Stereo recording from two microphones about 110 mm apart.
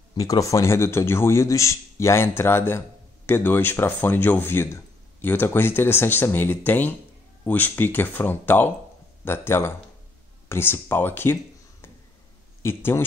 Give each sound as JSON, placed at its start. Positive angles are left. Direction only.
{"t": 0.1, "sound": "speech", "side_deg": 30}
{"t": 12.6, "sound": "speech", "side_deg": 20}